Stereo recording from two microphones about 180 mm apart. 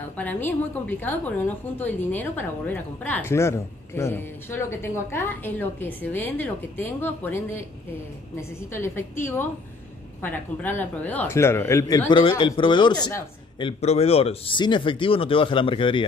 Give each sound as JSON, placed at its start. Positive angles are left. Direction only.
{"t": 0.2, "sound": "a woman's voice", "side_deg": 10}
{"t": 12.1, "sound": "a man's voice", "side_deg": 30}